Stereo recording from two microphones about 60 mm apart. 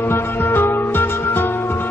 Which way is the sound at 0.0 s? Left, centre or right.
Left.